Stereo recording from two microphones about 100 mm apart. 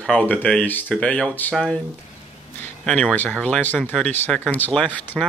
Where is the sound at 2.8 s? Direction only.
10° left (ahead or behind).